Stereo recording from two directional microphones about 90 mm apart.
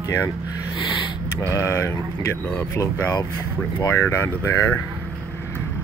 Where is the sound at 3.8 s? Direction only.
30° left (ahead or behind).